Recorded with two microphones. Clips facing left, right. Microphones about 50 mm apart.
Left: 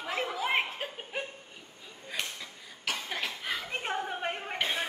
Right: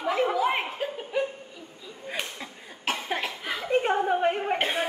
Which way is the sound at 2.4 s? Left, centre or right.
Right.